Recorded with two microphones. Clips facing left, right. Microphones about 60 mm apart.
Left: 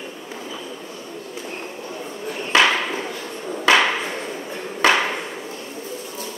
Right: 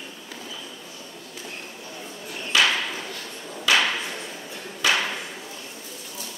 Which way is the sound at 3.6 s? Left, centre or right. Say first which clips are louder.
Left 5 dB; left.